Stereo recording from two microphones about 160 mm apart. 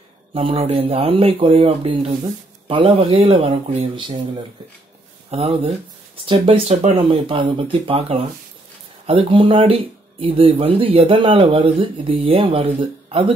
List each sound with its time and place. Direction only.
0.3 s speech: 35° right (ahead or behind)
5.3 s speech: 40° right (ahead or behind)
7.0 s speech: 30° right (ahead or behind)